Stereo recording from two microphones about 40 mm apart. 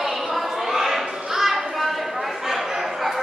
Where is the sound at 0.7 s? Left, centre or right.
Centre.